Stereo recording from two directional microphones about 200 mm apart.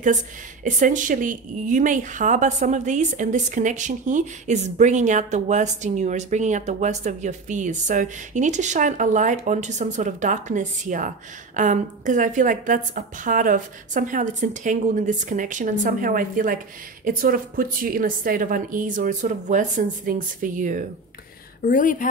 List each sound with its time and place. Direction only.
0.7 s a woman's voice: 40° right (ahead or behind)
21.6 s speech: 40° left (ahead or behind)